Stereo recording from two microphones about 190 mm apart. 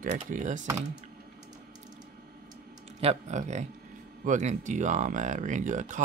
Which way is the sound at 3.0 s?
35° right (ahead or behind).